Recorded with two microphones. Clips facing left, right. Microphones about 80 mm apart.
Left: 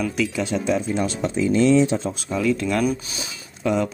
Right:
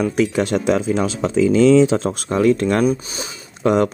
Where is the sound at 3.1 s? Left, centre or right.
Right.